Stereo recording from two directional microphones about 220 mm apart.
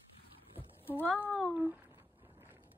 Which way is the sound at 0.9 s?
10° left (ahead or behind).